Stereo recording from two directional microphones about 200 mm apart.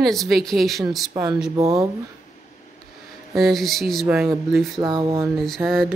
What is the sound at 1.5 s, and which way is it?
Speech, 15° right (ahead or behind).